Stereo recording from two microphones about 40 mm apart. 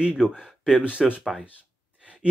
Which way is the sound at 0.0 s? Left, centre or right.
Centre.